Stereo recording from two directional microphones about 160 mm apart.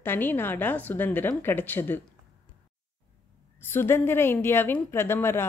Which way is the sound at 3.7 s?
15° left (ahead or behind).